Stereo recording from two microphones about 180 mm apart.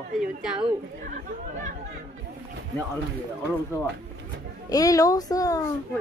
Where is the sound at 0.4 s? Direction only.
5° right (ahead or behind).